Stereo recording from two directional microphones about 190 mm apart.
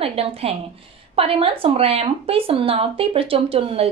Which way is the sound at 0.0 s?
30° right (ahead or behind).